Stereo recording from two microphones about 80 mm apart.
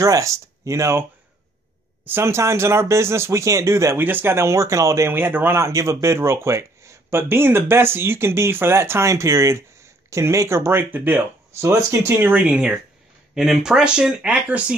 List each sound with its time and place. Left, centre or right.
0.0 s speech: right
2.0 s speech: right
5.1 s speech: right
11.5 s speech: right; by 14.8 s centre